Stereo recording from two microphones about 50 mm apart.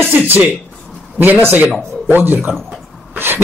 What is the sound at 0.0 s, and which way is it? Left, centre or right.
Speech, right.